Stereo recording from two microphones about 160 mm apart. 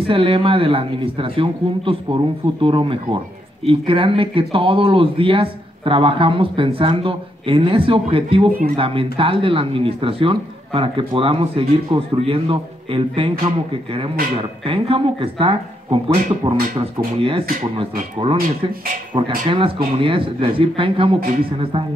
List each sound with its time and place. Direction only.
0.0 s speech: 35° right (ahead or behind)
14.6 s speech: 35° right (ahead or behind)